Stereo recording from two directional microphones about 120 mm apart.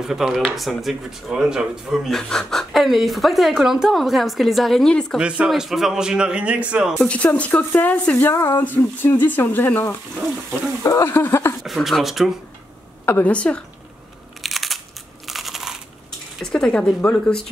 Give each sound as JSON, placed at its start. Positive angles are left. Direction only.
{"t": 0.0, "sound": "speech", "side_deg": -5}
{"t": 5.2, "sound": "a man's voice", "side_deg": -5}
{"t": 7.0, "sound": "speech", "side_deg": 10}
{"t": 11.6, "sound": "speech", "side_deg": 0}
{"t": 13.0, "sound": "speech", "side_deg": 15}
{"t": 14.4, "sound": "crushing", "side_deg": 0}
{"t": 15.2, "sound": "a sound", "side_deg": 0}
{"t": 16.5, "sound": "speech", "side_deg": 5}